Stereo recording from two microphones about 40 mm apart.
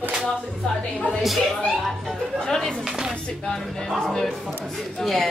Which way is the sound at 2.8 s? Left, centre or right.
Centre.